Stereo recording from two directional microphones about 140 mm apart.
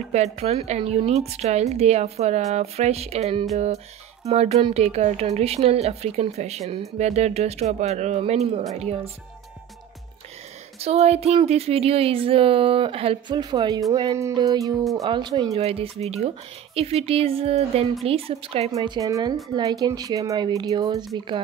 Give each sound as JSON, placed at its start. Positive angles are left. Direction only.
{"t": 0.1, "sound": "a woman's voice", "side_deg": -50}
{"t": 10.8, "sound": "speech", "side_deg": -50}
{"t": 15.5, "sound": "a woman's voice", "side_deg": -45}
{"t": 18.9, "sound": "speech", "side_deg": -25}